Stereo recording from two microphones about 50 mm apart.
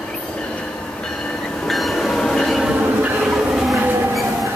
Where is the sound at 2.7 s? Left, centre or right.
Right.